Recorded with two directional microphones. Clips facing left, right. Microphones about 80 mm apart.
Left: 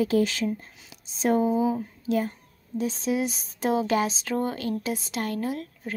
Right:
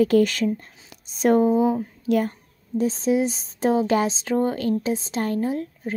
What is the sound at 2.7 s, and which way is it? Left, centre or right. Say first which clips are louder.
Speech: right 6 dB; right.